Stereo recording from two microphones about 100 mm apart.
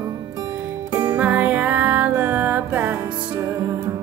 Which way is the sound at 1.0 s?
15° right (ahead or behind).